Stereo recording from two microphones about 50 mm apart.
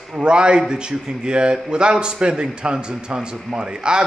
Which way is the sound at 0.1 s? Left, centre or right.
Centre.